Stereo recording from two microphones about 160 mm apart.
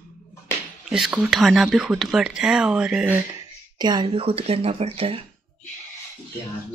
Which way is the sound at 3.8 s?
30° right (ahead or behind).